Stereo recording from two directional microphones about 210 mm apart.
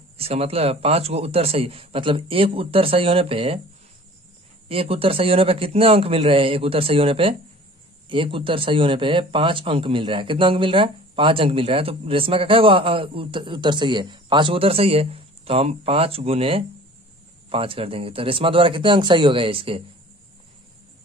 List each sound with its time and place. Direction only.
0.2 s speech: 30° right (ahead or behind)
4.6 s speech: 25° right (ahead or behind)